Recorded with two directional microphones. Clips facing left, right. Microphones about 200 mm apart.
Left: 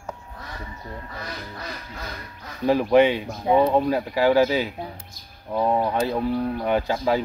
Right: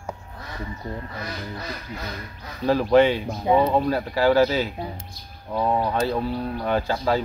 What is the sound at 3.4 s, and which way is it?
Speech, centre (ahead or behind).